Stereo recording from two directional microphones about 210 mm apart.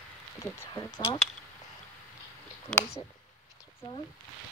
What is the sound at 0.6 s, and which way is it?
Speech, 15° left (ahead or behind).